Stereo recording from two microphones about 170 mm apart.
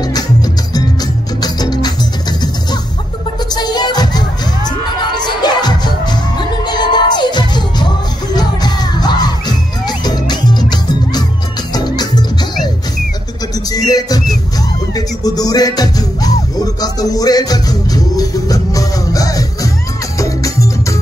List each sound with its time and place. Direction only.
1.4 s music: 25° left (ahead or behind)
3.4 s music: 25° left (ahead or behind)
8.3 s crowd: 25° left (ahead or behind)
11.7 s music: 25° left (ahead or behind)
13.7 s music: 20° left (ahead or behind)